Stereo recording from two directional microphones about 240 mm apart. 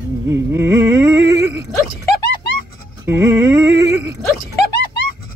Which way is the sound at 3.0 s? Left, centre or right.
Centre.